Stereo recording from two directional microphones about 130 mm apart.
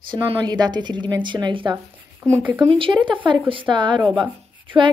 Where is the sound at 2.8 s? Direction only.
40° right (ahead or behind).